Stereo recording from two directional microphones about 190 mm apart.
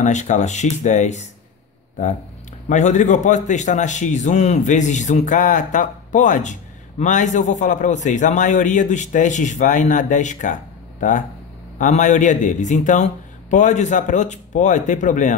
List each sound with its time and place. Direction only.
0.0 s a man's voice: 40° left (ahead or behind)
2.7 s a man's voice: 40° left (ahead or behind)